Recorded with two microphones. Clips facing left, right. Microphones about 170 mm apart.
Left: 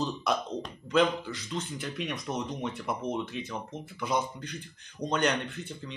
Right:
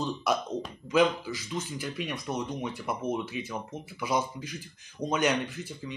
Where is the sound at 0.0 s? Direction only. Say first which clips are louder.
Right 1 dB; 5° right (ahead or behind).